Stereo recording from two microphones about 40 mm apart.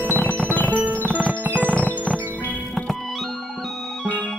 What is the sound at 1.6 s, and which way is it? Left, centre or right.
Music, left.